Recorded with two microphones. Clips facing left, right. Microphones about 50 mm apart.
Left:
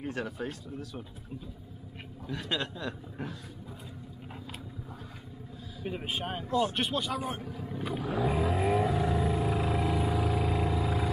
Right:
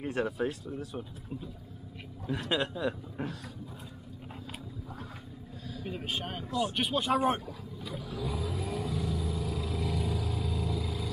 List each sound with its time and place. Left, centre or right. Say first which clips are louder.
0.0 s speech: right 4 dB; right
0.7 s a man's voice: right 2 dB; centre
2.5 s a man's voice: right 4 dB; centre
5.8 s speech: left 2 dB; centre
6.6 s speech: right 1 dB; centre
7.0 s speech: right 6 dB; right
7.6 s vehicle: left 7 dB; left